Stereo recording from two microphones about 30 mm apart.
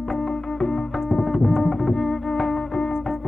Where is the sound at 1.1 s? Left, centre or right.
Centre.